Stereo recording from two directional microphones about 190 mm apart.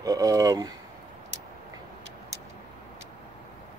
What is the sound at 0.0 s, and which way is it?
Speech, 20° right (ahead or behind).